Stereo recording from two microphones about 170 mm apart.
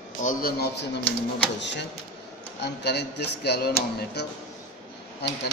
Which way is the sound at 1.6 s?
90° left.